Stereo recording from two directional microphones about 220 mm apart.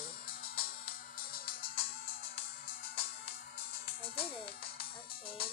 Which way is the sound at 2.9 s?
25° left (ahead or behind).